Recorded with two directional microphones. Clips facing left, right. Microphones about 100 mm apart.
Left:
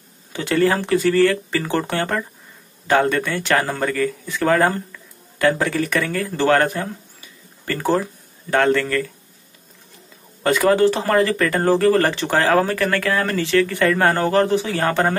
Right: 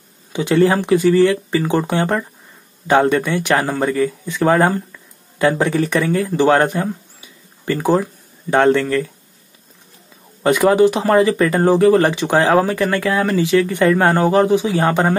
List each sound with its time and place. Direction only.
0.3 s speech: 20° right (ahead or behind)
4.9 s a sound: 20° right (ahead or behind)
5.9 s speech: 20° right (ahead or behind)
10.4 s speech: 20° right (ahead or behind)